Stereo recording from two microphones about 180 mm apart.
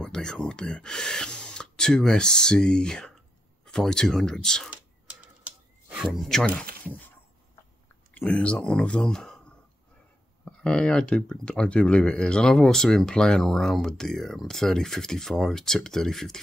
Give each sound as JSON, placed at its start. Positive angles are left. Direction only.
{"t": 0.0, "sound": "speech", "side_deg": 5}
{"t": 6.1, "sound": "speech", "side_deg": 0}
{"t": 8.1, "sound": "speech", "side_deg": 5}
{"t": 10.4, "sound": "speech", "side_deg": 5}